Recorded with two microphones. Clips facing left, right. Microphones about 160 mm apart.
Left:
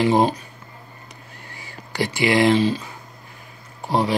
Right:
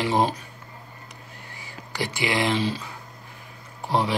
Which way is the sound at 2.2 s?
55° left (ahead or behind).